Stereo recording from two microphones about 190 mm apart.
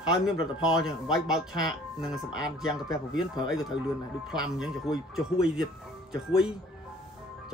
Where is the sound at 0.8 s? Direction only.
Centre (ahead or behind).